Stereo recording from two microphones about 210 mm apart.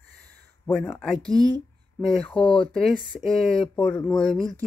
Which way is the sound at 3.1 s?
Centre (ahead or behind).